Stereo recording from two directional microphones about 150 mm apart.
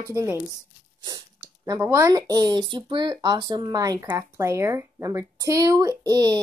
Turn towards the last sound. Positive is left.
turn(degrees=-25)  # may be behind; listen again after turning